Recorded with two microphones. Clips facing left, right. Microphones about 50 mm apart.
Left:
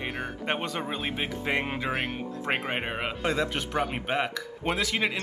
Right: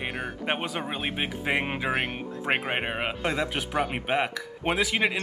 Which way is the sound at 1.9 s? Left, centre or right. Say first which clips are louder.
Right 2 dB; centre.